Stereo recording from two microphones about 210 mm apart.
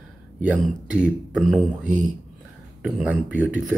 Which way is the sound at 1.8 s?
35° right (ahead or behind).